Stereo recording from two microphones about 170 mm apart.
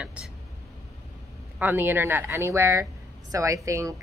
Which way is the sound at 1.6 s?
10° right (ahead or behind).